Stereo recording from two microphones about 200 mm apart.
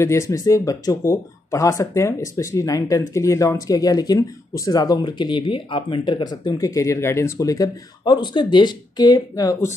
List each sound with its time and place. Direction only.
0.0 s speech: 15° left (ahead or behind)